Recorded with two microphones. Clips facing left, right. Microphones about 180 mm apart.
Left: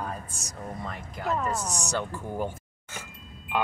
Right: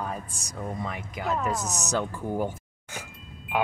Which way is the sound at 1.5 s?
10° left (ahead or behind).